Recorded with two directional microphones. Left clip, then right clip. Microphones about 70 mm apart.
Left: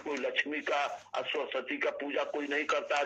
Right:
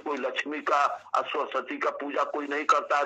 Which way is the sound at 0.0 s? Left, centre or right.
Right.